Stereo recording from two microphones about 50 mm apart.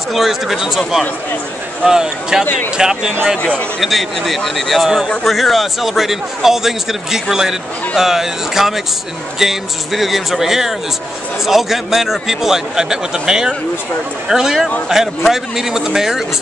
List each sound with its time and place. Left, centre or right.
0.1 s a man's voice: centre
1.9 s speech: centre
3.8 s a man's voice: centre